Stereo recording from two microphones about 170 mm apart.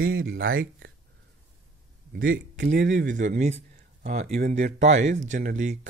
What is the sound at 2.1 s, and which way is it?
Speech, 75° right (ahead or behind).